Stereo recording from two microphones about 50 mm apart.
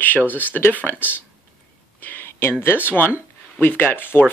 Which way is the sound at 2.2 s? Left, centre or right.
Left.